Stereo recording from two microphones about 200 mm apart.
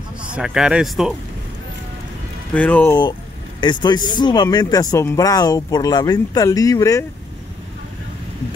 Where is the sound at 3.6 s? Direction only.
25° left (ahead or behind).